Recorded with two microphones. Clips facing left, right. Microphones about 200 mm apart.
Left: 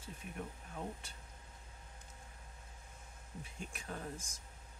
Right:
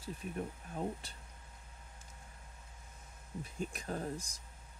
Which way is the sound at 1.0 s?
35° right (ahead or behind).